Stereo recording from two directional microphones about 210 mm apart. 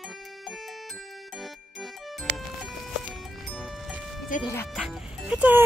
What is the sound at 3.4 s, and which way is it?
Music, centre (ahead or behind).